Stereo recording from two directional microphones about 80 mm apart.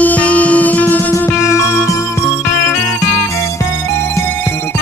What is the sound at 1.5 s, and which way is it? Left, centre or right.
Music, left.